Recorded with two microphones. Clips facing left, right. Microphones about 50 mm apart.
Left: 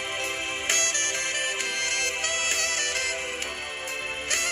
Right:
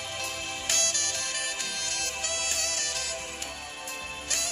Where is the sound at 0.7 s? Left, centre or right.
Left.